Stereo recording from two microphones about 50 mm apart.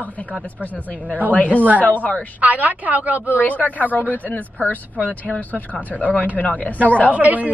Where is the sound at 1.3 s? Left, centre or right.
Left.